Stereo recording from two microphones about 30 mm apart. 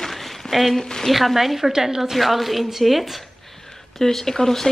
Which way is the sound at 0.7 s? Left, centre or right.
Centre.